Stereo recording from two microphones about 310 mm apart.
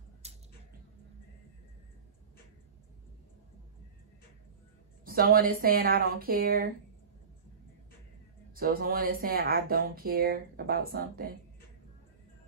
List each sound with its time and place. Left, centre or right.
0.2 s a sound: right
5.0 s speech: right
8.5 s speech: right